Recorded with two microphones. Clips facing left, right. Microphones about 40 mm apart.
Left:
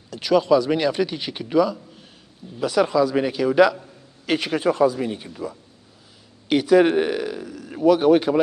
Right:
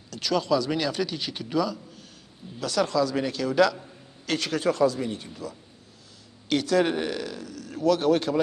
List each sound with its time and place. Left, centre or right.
0.1 s a man's voice: centre